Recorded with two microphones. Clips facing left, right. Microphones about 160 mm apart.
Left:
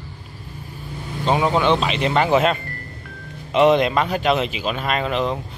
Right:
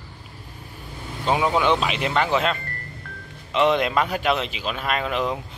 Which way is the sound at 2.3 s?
50° left (ahead or behind).